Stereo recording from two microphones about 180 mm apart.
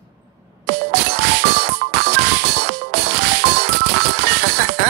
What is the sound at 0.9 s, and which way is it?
Music, 70° right (ahead or behind).